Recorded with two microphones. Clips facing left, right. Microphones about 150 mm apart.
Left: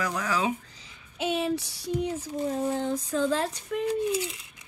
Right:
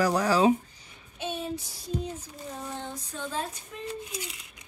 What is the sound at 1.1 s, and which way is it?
Child singing, 85° left.